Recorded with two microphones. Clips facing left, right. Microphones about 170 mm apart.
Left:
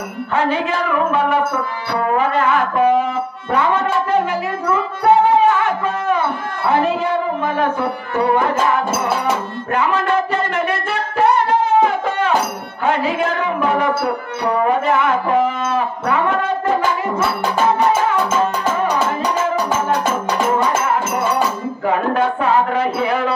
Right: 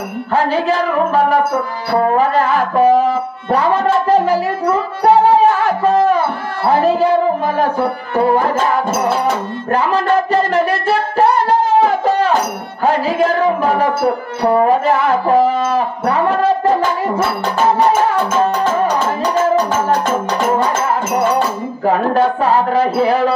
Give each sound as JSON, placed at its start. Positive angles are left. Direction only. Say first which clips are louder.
{"t": 0.3, "sound": "music", "louder": "right 3 dB", "side_deg": -35}
{"t": 5.0, "sound": "speech", "louder": "right 2 dB", "side_deg": -35}
{"t": 9.7, "sound": "singing", "louder": "right 3 dB", "side_deg": -35}
{"t": 12.8, "sound": "music", "louder": "right 4 dB", "side_deg": -35}
{"t": 21.8, "sound": "speech", "louder": "right 4 dB", "side_deg": -35}